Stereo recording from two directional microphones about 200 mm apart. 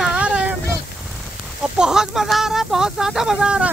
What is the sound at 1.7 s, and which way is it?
Speech, 5° right (ahead or behind).